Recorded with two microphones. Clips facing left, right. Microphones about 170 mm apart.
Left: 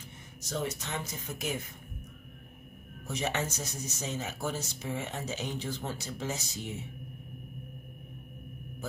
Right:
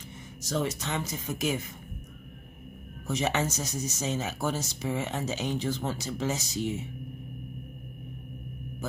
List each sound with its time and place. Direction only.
0.4 s speech: 90° right
3.1 s speech: 90° right